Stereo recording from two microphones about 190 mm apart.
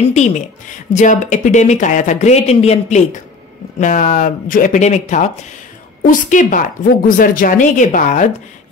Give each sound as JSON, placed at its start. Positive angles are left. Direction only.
{"t": 0.0, "sound": "a woman's voice", "side_deg": 35}